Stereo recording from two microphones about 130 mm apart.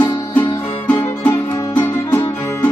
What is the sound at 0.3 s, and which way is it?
Music, 15° left (ahead or behind).